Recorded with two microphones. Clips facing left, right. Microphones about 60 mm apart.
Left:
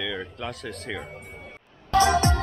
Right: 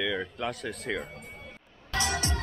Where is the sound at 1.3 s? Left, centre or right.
Left.